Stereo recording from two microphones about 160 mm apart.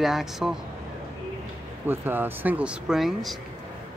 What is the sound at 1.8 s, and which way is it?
Speech, 10° right (ahead or behind).